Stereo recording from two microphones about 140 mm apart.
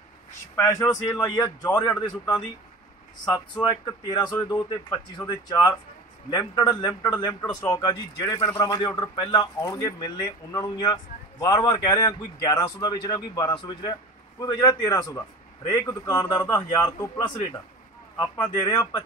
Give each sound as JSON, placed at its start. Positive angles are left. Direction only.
{"t": 0.6, "sound": "speech", "side_deg": 20}
{"t": 3.6, "sound": "a man's voice", "side_deg": 25}
{"t": 18.2, "sound": "speech", "side_deg": 25}